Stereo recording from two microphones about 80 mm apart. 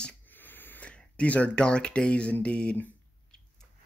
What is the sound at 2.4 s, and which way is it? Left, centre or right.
Speech, centre.